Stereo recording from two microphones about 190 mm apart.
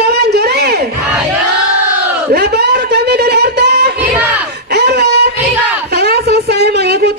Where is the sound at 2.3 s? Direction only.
60° right (ahead or behind).